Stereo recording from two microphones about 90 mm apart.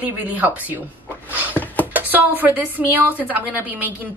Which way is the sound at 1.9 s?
20° right (ahead or behind).